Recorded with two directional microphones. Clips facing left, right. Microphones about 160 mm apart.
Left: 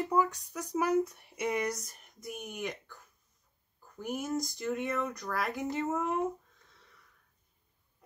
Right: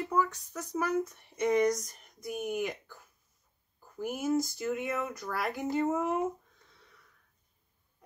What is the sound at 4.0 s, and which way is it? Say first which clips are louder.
Speech: right 4 dB; 5° right (ahead or behind).